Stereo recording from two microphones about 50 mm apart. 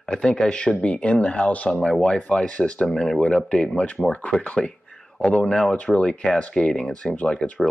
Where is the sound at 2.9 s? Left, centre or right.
Centre.